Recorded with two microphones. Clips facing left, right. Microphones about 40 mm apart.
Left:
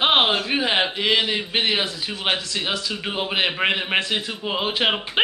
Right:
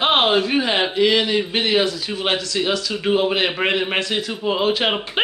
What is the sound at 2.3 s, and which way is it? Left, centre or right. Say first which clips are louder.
Speech: right 4 dB; centre.